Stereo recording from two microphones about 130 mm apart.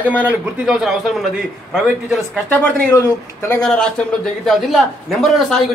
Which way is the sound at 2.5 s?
10° left (ahead or behind).